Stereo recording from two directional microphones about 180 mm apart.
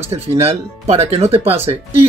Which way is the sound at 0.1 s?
35° right (ahead or behind).